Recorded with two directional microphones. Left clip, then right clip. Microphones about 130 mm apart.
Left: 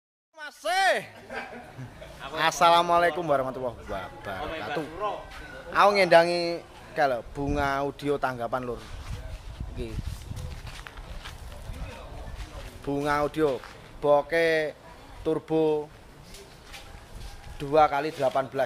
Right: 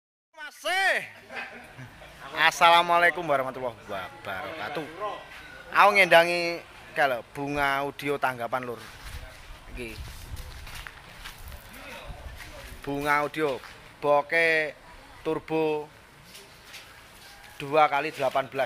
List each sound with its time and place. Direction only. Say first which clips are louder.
0.4 s a sound: left 1 dB; centre (ahead or behind)
2.3 s speech: right 1 dB; centre (ahead or behind)
12.8 s speech: right 1 dB; 15° right (ahead or behind)
17.6 s speech: left 1 dB; 15° right (ahead or behind)